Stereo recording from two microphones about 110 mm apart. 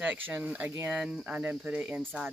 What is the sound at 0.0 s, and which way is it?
Speech, 15° right (ahead or behind).